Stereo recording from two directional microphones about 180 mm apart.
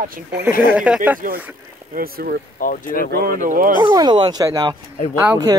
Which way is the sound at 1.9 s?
55° right (ahead or behind).